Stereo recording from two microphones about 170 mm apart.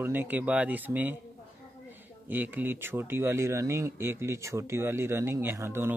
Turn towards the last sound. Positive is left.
turn(degrees=-15)  # may be behind; listen again after turning